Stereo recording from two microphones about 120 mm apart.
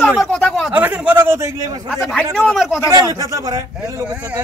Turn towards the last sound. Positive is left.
turn(degrees=-30)  # may be behind; listen again after turning